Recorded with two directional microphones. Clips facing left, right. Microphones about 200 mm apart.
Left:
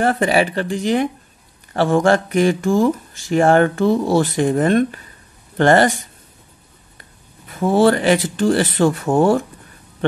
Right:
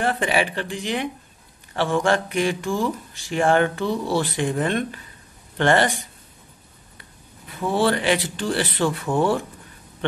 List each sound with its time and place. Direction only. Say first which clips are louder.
0.0 s speech: left 6 dB; 40° left (ahead or behind)
7.6 s speech: left 7 dB; 45° left (ahead or behind)